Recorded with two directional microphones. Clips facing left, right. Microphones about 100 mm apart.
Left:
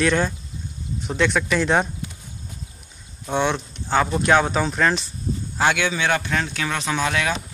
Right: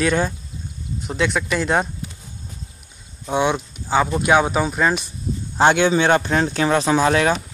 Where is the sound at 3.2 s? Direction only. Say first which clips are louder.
Right 2 dB; 10° right (ahead or behind).